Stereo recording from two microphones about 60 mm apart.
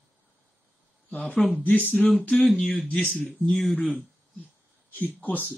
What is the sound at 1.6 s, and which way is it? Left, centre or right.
Speech, left.